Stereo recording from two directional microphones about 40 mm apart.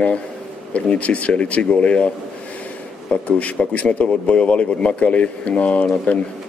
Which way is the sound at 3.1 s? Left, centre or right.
Left.